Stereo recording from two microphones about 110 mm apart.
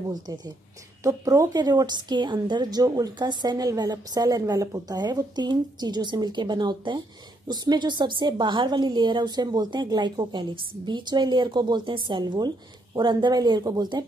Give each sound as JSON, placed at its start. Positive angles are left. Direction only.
{"t": 1.0, "sound": "a woman's voice", "side_deg": -30}